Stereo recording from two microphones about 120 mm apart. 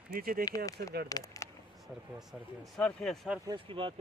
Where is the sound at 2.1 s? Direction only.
Centre (ahead or behind).